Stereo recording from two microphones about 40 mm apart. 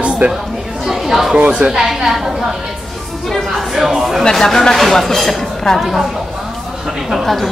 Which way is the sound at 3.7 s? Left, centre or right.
Centre.